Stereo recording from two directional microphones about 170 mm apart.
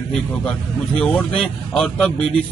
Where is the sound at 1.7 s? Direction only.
5° left (ahead or behind).